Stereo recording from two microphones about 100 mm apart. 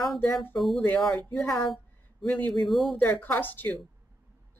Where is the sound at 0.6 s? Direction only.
Centre (ahead or behind).